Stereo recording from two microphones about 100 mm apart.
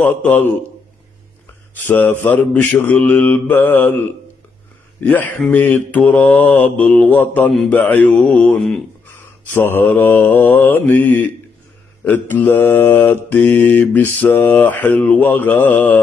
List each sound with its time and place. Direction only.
0.0 s mantra: 15° left (ahead or behind)
1.9 s mantra: 15° left (ahead or behind)
5.0 s mantra: 15° left (ahead or behind)
9.5 s mantra: 20° left (ahead or behind)